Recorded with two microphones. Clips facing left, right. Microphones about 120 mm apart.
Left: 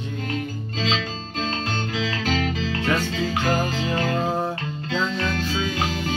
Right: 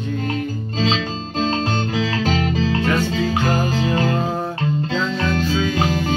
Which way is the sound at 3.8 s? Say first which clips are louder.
Right 5 dB; 30° right (ahead or behind).